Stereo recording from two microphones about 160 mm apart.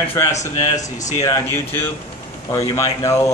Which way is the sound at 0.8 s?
50° left (ahead or behind).